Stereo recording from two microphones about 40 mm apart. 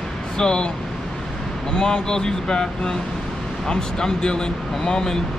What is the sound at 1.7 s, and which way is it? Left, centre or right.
Speech, left.